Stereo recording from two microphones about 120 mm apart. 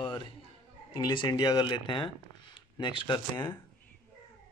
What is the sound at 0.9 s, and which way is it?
Speech, 35° left (ahead or behind).